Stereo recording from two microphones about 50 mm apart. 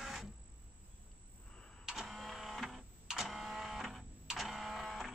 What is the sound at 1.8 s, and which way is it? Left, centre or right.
Printer, centre.